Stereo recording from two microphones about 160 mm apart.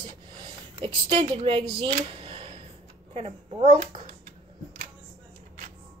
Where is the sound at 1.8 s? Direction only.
35° right (ahead or behind).